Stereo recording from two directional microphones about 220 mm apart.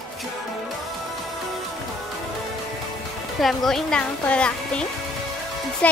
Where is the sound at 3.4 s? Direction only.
Centre (ahead or behind).